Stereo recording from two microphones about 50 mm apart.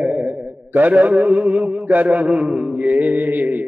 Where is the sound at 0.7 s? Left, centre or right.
Right.